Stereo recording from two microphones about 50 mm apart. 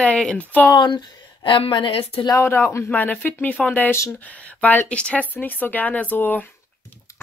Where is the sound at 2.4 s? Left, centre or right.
Left.